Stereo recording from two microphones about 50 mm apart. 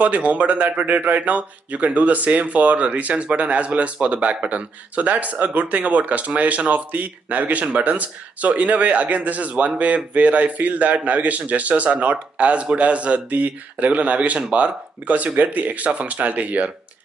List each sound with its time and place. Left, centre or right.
0.0 s speech: right